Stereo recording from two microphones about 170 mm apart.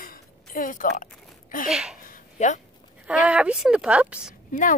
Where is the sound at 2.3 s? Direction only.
45° left (ahead or behind).